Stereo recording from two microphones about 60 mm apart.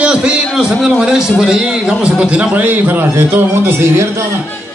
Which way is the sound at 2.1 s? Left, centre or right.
Right.